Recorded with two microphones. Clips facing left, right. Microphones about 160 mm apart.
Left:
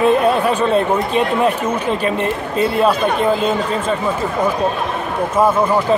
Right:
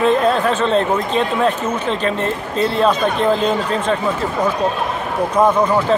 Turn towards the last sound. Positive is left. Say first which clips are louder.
# even
turn(degrees=10)  # may be behind; listen again after turning